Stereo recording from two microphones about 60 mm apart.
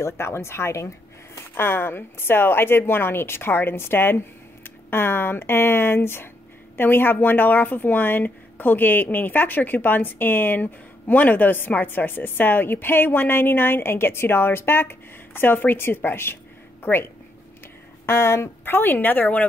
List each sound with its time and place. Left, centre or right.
0.0 s speech: left
1.5 s speech: left
18.0 s speech: left
18.8 s speech: left